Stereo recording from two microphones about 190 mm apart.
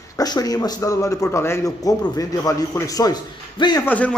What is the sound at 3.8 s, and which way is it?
Speech, 10° left (ahead or behind).